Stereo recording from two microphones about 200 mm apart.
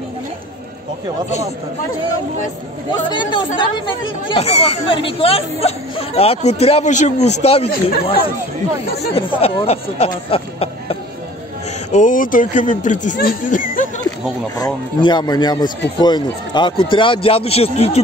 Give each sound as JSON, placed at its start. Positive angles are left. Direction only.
{"t": 3.1, "sound": "speech", "side_deg": 25}
{"t": 11.9, "sound": "speech", "side_deg": 40}
{"t": 14.6, "sound": "speech", "side_deg": 20}